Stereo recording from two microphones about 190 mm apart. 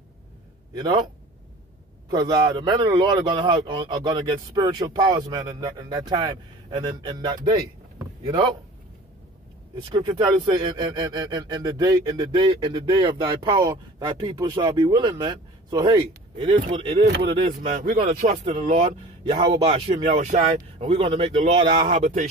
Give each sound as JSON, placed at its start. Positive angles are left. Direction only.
{"t": 0.7, "sound": "speech", "side_deg": -20}
{"t": 8.0, "sound": "a sound", "side_deg": -20}
{"t": 9.8, "sound": "speech", "side_deg": -25}
{"t": 17.6, "sound": "speech", "side_deg": -40}
{"t": 21.8, "sound": "speech", "side_deg": -40}